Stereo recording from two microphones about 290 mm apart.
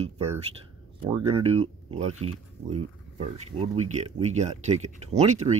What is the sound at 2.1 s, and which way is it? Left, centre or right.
Speech, right.